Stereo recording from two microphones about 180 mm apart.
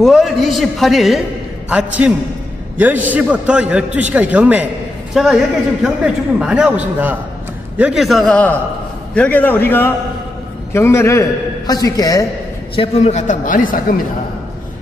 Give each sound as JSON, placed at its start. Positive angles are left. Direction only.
{"t": 0.0, "sound": "a man's voice", "side_deg": 0}
{"t": 12.7, "sound": "a woman's voice", "side_deg": 30}